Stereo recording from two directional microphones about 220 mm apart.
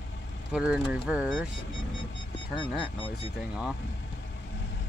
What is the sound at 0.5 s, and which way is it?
Speech, 5° right (ahead or behind).